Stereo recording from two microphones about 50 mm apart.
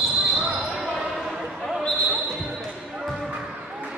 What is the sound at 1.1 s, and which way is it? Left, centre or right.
Basketball bounce, centre.